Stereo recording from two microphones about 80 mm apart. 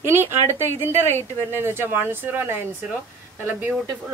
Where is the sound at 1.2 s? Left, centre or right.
Left.